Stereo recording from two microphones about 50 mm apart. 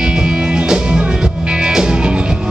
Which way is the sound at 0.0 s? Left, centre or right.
Centre.